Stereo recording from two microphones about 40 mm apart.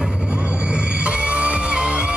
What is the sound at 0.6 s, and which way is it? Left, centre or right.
Music, right.